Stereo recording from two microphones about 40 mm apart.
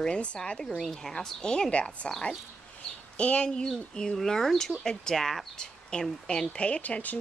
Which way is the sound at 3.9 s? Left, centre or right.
Centre.